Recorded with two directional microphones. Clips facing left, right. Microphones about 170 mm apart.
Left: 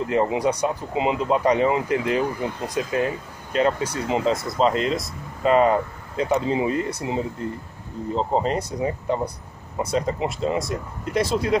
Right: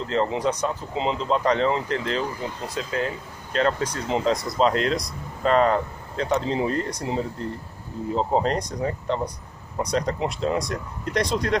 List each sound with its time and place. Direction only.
0.0 s speech: 15° left (ahead or behind)